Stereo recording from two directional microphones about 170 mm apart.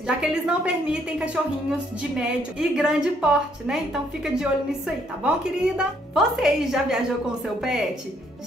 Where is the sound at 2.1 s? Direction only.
5° right (ahead or behind).